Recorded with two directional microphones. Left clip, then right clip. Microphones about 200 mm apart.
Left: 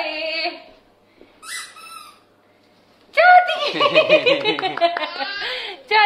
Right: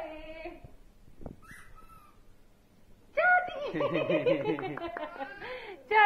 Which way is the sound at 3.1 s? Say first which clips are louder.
Left 14 dB; 20° left (ahead or behind).